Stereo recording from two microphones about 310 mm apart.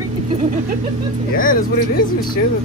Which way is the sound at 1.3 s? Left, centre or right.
Left.